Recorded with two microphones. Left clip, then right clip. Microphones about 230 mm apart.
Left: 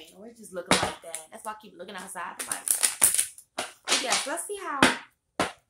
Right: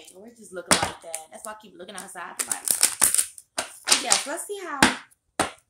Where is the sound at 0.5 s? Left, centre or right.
Centre.